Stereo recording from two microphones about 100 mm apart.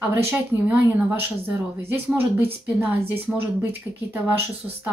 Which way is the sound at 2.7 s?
20° right (ahead or behind).